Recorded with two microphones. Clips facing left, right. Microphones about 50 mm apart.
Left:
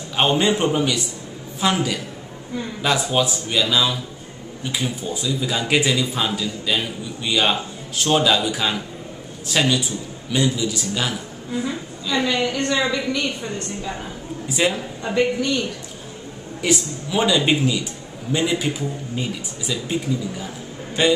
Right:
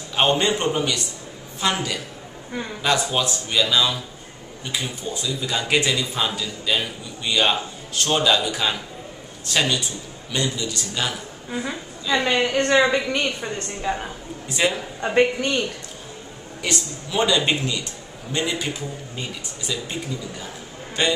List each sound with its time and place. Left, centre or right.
0.1 s a man's voice: centre
12.3 s a woman's voice: right
14.5 s a man's voice: centre
15.1 s a woman's voice: right
16.6 s a man's voice: centre